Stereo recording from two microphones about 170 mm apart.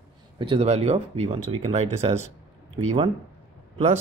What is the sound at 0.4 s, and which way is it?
Speech, 35° right (ahead or behind).